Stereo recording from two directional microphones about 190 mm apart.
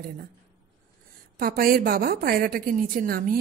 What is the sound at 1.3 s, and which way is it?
Speech, 50° right (ahead or behind).